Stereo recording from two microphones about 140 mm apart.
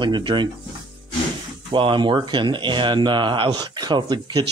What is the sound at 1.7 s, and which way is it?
Speech, 35° right (ahead or behind).